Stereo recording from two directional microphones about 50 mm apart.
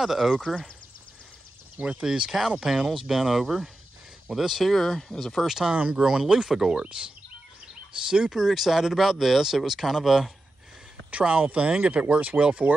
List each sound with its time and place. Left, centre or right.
0.0 s speech: centre
1.8 s speech: right
2.0 s speech: centre
4.6 s speech: centre
5.5 s speech: centre
8.3 s speech: centre
11.1 s speech: right